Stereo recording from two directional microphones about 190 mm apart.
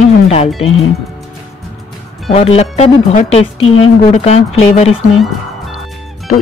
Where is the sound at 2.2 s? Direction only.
30° left (ahead or behind).